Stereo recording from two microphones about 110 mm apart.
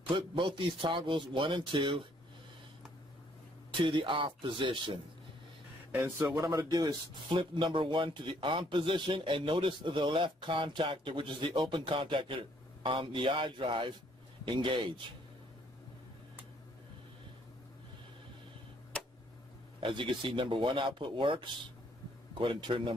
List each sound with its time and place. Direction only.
0.1 s speech: 50° right (ahead or behind)
3.7 s speech: 50° right (ahead or behind)
5.9 s speech: 20° right (ahead or behind)
7.2 s speech: 45° right (ahead or behind)
19.8 s speech: 50° right (ahead or behind)